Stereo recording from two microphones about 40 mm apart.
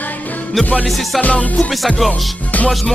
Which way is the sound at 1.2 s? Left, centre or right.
Left.